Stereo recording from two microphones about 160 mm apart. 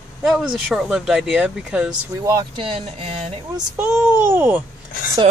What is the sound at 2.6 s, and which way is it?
Speech, 35° right (ahead or behind).